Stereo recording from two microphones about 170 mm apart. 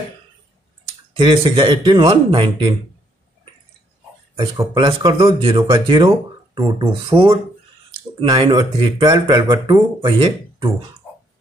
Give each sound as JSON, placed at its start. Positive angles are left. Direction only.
{"t": 1.1, "sound": "speech", "side_deg": -30}
{"t": 4.4, "sound": "speech", "side_deg": -30}